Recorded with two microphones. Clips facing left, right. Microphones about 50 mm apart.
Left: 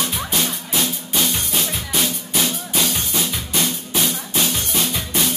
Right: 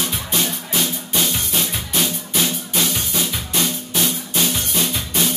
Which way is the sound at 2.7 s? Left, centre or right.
Centre.